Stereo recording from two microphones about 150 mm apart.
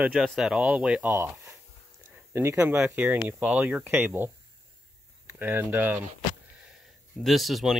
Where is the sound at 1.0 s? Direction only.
15° right (ahead or behind).